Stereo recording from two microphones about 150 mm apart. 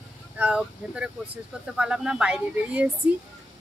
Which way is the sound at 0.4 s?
5° right (ahead or behind).